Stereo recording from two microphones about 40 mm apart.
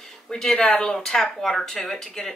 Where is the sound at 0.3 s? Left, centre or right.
Centre.